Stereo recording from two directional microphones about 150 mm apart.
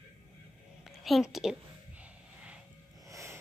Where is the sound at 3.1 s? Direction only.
20° right (ahead or behind).